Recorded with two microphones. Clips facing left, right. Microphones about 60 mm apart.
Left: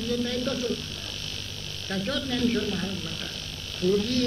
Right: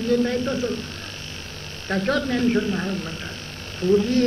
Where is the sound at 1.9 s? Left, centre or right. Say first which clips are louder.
Right 7 dB; right.